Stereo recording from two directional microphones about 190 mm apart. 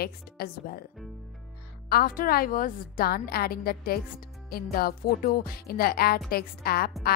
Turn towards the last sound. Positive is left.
turn(degrees=55)  # may be behind; listen again after turning